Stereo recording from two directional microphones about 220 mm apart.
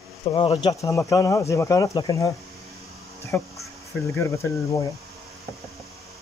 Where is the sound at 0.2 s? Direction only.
25° left (ahead or behind).